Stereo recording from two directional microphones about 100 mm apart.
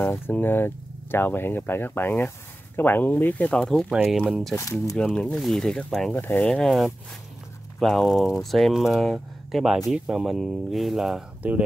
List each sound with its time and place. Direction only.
0.3 s speech: 20° left (ahead or behind)
3.9 s speech: 5° right (ahead or behind)
4.6 s speech: 35° left (ahead or behind)
4.9 s speech: 10° left (ahead or behind)
6.1 s speech: 25° left (ahead or behind)
6.4 s speech: 5° left (ahead or behind)